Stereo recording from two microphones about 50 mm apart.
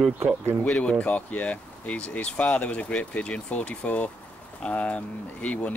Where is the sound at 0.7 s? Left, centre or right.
Left.